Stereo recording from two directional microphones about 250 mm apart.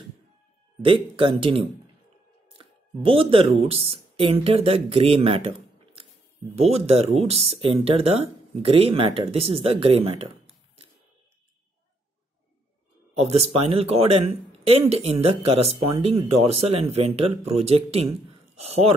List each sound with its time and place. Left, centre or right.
0.8 s speech: right
6.5 s speech: right
13.2 s speech: right